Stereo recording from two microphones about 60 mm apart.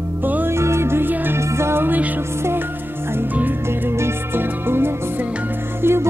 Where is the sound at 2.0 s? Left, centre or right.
Right.